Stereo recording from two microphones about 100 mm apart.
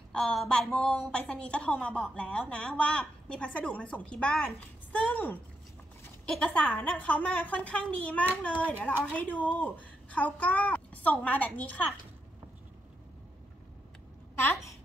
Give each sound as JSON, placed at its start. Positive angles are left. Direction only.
{"t": 0.1, "sound": "a woman's voice", "side_deg": 5}
{"t": 5.0, "sound": "a woman's voice", "side_deg": 15}